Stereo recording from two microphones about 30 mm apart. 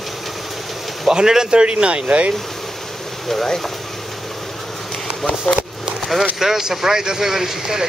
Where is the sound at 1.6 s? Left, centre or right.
Right.